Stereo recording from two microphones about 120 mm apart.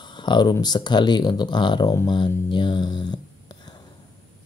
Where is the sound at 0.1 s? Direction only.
40° left (ahead or behind).